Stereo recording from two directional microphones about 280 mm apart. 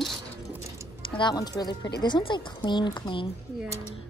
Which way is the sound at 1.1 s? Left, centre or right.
Centre.